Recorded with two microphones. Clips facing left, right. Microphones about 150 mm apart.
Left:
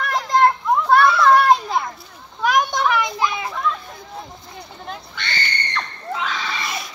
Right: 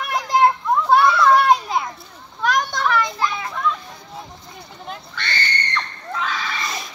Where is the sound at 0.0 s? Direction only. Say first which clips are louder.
Even; 10° right (ahead or behind).